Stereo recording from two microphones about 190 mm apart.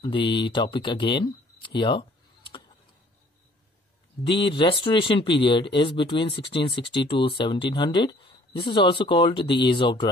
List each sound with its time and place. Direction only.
0.0 s speech: 25° left (ahead or behind)
4.4 s speech: 25° left (ahead or behind)